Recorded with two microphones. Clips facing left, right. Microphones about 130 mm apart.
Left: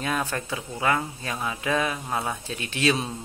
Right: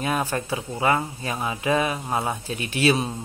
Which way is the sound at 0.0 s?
10° right (ahead or behind).